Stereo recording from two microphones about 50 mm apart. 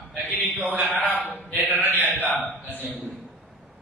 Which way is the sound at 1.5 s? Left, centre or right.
Right.